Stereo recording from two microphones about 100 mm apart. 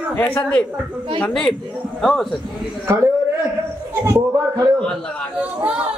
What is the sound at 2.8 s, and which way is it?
Speech, 30° right (ahead or behind).